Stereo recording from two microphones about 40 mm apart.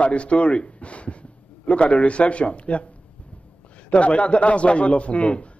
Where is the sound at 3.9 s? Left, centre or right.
Left.